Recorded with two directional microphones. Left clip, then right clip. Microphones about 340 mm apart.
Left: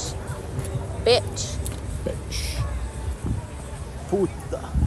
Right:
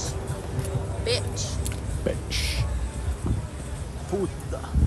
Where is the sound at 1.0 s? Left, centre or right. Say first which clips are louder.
Left 9 dB; centre.